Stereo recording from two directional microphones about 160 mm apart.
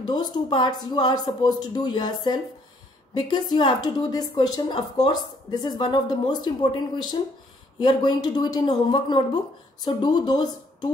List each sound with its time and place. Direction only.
0.0 s a woman's voice: 25° left (ahead or behind)